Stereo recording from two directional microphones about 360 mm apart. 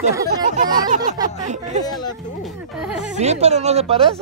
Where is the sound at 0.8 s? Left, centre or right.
Right.